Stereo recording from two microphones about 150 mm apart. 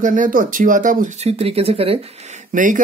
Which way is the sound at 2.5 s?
60° right (ahead or behind).